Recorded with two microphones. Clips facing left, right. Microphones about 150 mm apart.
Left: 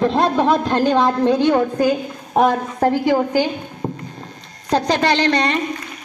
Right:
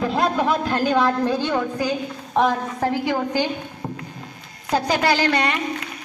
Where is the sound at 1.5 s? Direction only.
50° left (ahead or behind).